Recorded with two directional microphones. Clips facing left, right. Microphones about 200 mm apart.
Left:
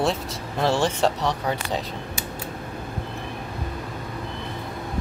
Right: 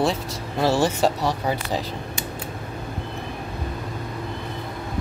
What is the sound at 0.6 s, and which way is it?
Speech, 5° right (ahead or behind).